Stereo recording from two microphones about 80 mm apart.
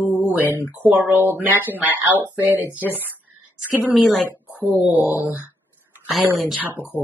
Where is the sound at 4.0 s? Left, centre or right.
Centre.